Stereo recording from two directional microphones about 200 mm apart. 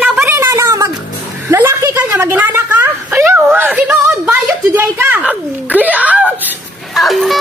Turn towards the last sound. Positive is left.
turn(degrees=0)  # may be behind; listen again after turning